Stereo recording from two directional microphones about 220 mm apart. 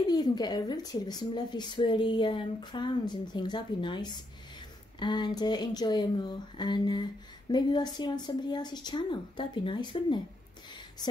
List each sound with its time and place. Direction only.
0.1 s speech: 20° left (ahead or behind)